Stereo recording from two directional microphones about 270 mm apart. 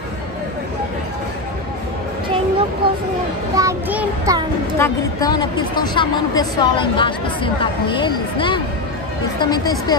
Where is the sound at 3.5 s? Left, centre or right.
Centre.